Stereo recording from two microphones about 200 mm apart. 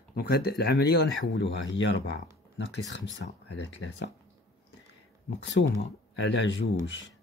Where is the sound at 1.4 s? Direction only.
70° left (ahead or behind).